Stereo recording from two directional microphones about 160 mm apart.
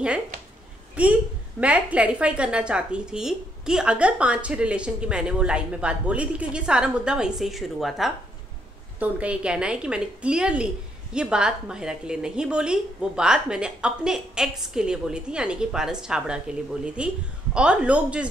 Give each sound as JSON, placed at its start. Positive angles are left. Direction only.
{"t": 1.0, "sound": "a woman's voice", "side_deg": -10}